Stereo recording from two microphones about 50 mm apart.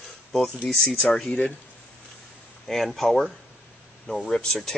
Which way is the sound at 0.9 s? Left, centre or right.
Centre.